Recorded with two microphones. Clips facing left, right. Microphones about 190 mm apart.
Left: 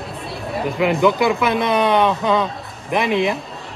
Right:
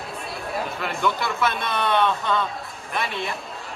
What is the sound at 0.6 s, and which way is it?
Speech, 15° left (ahead or behind).